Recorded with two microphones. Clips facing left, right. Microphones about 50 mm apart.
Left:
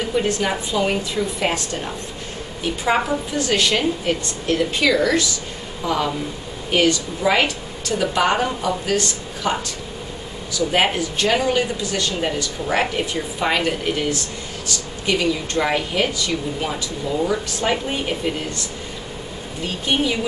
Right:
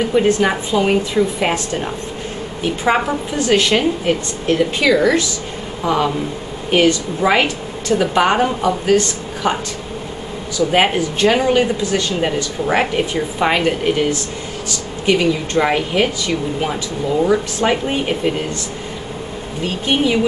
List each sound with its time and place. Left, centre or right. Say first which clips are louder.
0.1 s a woman's voice: right 5 dB; centre
3.3 s a woman's voice: right 5 dB; right
10.7 s speech: right 4 dB; centre
19.9 s speech: right 4 dB; centre